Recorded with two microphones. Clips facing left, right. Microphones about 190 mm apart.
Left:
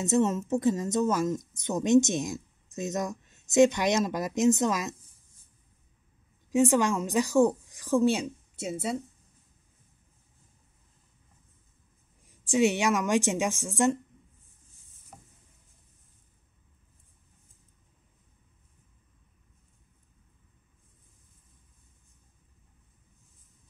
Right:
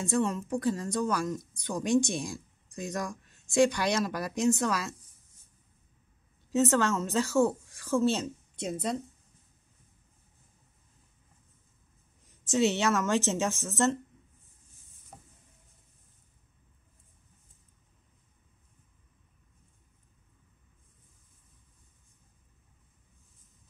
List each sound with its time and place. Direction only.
0.0 s speech: 20° left (ahead or behind)
6.5 s speech: 15° left (ahead or behind)
12.4 s speech: 15° left (ahead or behind)